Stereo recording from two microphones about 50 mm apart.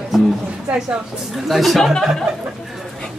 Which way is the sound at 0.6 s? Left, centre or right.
Centre.